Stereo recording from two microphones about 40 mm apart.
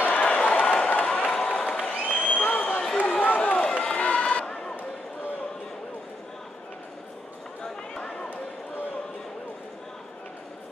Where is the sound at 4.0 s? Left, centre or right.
Left.